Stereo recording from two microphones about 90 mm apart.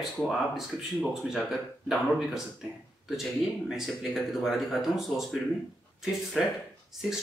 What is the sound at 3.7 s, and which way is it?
Speech, centre (ahead or behind).